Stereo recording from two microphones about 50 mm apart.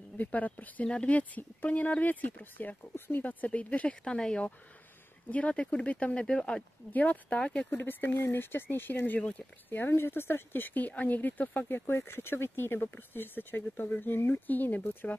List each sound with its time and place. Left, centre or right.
0.2 s speech: left
0.8 s speech: left
4.0 s speech: centre
6.2 s speech: centre
6.9 s speech: left
7.7 s speech: left